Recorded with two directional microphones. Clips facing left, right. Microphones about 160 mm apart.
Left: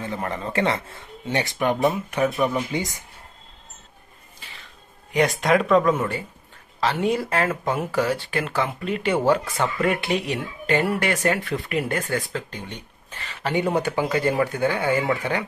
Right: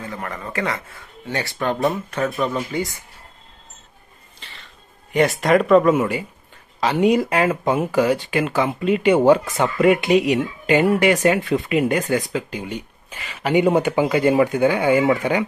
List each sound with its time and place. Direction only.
0.0 s speech: 25° left (ahead or behind)
5.1 s speech: centre (ahead or behind); by 15.4 s 20° right (ahead or behind)